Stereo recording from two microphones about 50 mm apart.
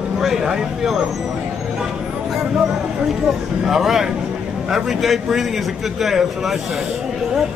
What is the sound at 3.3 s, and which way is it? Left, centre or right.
A man's voice, centre.